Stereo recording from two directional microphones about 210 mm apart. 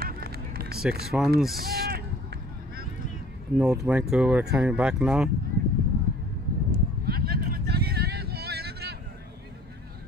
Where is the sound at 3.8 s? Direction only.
5° right (ahead or behind).